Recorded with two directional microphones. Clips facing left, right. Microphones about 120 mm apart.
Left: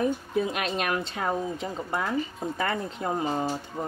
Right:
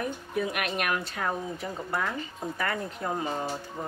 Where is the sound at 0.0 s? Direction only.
25° left (ahead or behind).